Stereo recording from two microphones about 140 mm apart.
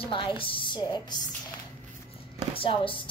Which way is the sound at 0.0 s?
40° left (ahead or behind).